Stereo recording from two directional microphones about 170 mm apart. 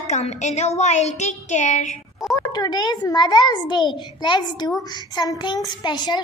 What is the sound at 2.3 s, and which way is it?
A child's voice, 25° left (ahead or behind).